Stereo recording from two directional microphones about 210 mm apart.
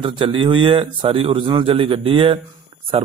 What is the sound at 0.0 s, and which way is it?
A man's voice, 25° right (ahead or behind).